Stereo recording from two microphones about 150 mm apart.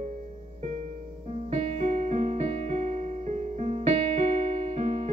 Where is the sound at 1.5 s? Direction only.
45° right (ahead or behind).